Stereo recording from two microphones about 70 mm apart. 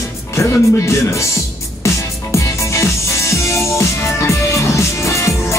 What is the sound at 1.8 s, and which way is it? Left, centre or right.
Music, left.